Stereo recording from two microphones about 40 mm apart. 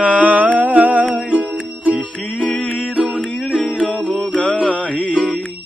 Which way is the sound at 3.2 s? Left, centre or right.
Left.